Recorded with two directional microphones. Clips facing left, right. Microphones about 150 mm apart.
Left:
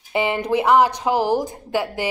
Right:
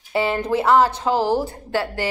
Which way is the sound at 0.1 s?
15° left (ahead or behind).